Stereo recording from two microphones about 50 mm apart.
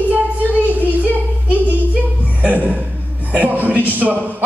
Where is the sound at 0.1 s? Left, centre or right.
Right.